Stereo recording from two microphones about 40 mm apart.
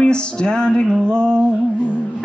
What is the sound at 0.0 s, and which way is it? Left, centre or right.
Music, left.